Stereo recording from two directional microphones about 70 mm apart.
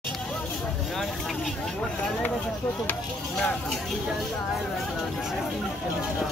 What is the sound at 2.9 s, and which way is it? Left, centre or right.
Speech, centre.